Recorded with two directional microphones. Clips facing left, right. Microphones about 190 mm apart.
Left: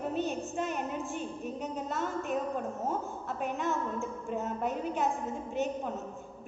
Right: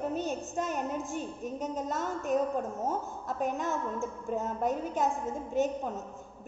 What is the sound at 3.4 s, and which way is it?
A woman's voice, 40° right (ahead or behind).